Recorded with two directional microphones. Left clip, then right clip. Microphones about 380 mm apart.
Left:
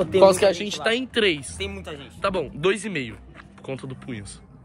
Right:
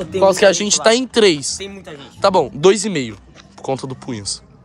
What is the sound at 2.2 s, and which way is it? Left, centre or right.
A man's voice, centre.